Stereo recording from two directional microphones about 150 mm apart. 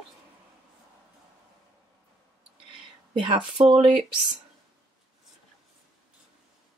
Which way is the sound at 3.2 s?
30° right (ahead or behind).